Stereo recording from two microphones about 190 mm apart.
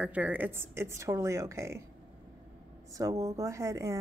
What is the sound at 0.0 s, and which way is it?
Speech, 5° right (ahead or behind).